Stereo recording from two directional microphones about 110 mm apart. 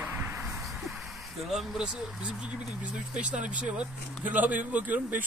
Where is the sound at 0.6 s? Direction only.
Centre (ahead or behind).